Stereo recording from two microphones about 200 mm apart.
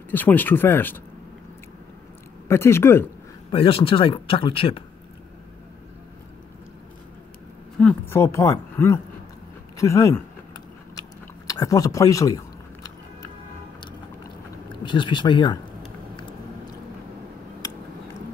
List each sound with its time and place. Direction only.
0.1 s speech: 10° left (ahead or behind)
2.4 s speech: 10° left (ahead or behind)
3.5 s speech: 25° left (ahead or behind)
7.8 s speech: 10° left (ahead or behind)
11.0 s chewing: 20° left (ahead or behind)
14.9 s speech: 25° left (ahead or behind)